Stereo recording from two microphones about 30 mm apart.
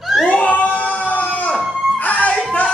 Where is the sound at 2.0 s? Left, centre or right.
Left.